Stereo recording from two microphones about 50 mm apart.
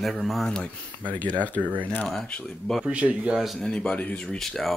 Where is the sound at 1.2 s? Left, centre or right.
Left.